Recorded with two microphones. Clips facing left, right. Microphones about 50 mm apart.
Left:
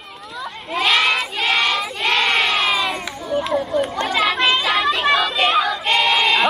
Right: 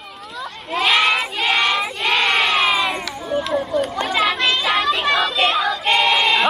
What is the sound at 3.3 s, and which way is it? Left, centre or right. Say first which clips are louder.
Run: left 1 dB; centre.